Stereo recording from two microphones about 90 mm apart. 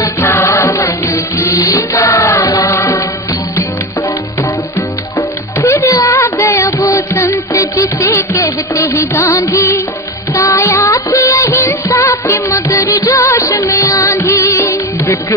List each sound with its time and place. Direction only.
0.0 s music: 30° left (ahead or behind)
5.6 s child singing: 35° left (ahead or behind)
6.6 s music: 35° left (ahead or behind)